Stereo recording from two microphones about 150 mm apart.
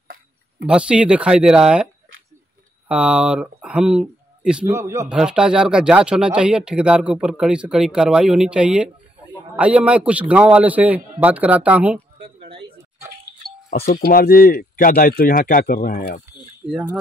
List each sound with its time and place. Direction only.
0.7 s speech: 5° right (ahead or behind)
2.9 s speech: 5° right (ahead or behind)
4.6 s a man's voice: 20° right (ahead or behind)
5.1 s a man's voice: 5° right (ahead or behind)
12.2 s a sound: 35° right (ahead or behind)
13.8 s speech: 85° left
16.6 s speech: 5° right (ahead or behind)